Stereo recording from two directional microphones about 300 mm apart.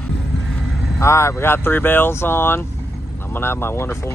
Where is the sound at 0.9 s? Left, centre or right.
Centre.